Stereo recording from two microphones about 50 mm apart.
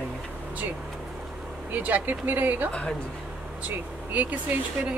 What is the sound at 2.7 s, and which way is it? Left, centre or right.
Speech, left.